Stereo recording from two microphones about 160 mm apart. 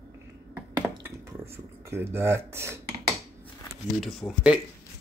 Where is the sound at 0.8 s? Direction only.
15° right (ahead or behind).